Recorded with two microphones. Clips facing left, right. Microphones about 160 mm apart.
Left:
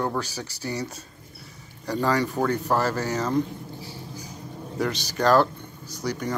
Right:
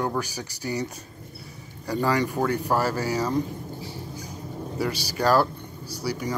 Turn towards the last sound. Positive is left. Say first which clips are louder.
# even
turn(degrees=-10)  # may be behind; listen again after turning